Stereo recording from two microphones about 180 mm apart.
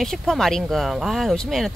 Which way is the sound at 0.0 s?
Centre (ahead or behind).